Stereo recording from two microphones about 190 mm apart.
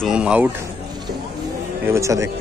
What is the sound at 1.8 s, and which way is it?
Speech, 15° right (ahead or behind).